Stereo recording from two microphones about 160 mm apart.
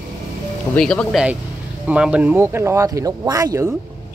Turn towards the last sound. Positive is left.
turn(degrees=-20)  # may be behind; listen again after turning